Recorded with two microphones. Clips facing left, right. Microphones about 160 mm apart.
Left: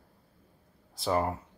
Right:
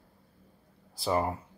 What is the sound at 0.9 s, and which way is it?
Speech, centre (ahead or behind).